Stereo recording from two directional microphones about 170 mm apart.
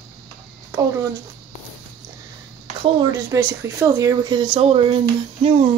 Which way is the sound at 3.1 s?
20° right (ahead or behind).